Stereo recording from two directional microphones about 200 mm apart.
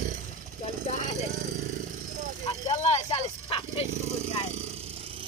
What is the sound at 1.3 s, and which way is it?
Vehicle, 40° right (ahead or behind).